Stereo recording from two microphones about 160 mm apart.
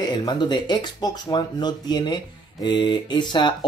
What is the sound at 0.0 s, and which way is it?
Speech, 25° left (ahead or behind).